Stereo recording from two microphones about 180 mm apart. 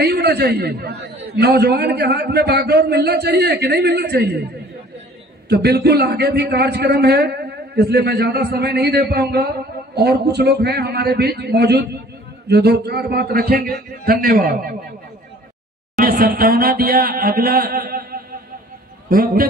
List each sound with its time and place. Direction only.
0.0 s a man's voice: 65° right (ahead or behind)
5.5 s a man's voice: 65° right (ahead or behind)
16.0 s a man's voice: 55° right (ahead or behind)